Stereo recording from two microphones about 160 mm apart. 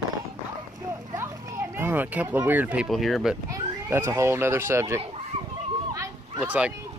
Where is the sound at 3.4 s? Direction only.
20° right (ahead or behind).